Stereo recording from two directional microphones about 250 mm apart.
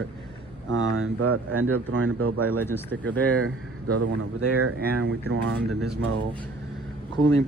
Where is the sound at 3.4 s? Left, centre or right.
Right.